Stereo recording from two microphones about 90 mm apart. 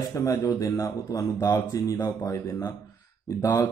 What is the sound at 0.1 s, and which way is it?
A man's voice, 35° left (ahead or behind).